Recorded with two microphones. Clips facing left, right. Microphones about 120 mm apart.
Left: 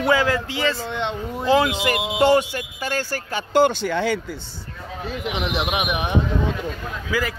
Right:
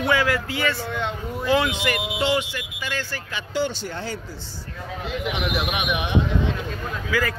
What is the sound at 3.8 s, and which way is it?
Speech, 80° left.